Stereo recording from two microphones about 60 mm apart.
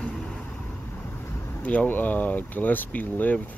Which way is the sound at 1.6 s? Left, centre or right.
Left.